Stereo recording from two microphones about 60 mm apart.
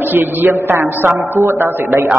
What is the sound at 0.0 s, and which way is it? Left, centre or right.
A man's voice, right.